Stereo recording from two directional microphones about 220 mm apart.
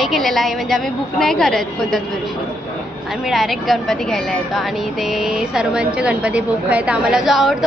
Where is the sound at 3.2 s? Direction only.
Centre (ahead or behind).